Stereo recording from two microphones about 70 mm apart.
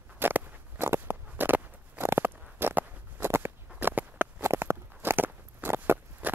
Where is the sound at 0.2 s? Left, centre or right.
Right.